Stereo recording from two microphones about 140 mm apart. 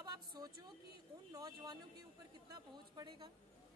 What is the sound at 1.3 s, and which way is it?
A woman's voice, 30° right (ahead or behind).